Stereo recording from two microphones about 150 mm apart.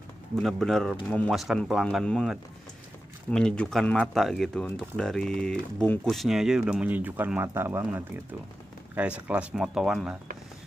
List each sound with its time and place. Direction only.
0.4 s speech: centre (ahead or behind)